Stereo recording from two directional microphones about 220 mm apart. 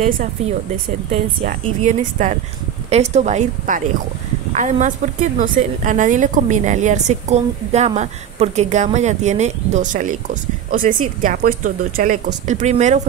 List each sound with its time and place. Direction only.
1.4 s a woman's voice: 35° right (ahead or behind)